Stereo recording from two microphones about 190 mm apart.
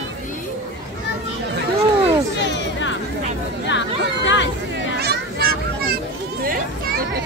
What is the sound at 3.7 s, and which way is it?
Chatter, 75° left (ahead or behind).